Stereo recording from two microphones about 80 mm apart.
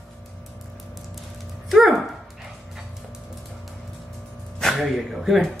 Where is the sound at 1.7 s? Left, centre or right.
Centre.